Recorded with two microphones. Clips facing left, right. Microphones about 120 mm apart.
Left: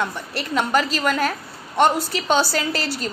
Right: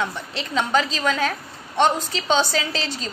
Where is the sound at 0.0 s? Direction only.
10° left (ahead or behind).